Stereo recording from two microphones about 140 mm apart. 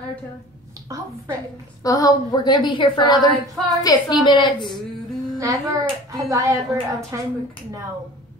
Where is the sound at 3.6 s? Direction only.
Centre (ahead or behind).